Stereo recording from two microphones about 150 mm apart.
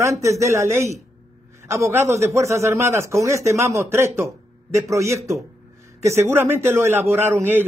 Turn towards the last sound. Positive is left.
turn(degrees=-15)  # may be behind; listen again after turning